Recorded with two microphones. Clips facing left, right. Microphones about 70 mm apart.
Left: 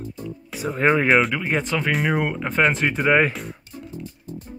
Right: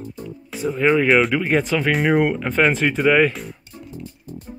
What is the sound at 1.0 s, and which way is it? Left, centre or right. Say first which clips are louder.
Speech: right 2 dB; centre.